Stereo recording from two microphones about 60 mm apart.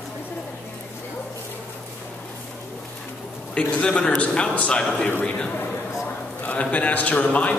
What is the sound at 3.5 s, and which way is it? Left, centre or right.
A man's voice, centre.